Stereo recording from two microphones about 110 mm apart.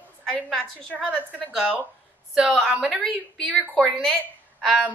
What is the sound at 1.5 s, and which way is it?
A woman's voice, 5° right (ahead or behind).